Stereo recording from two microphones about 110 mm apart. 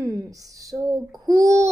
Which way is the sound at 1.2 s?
30° right (ahead or behind).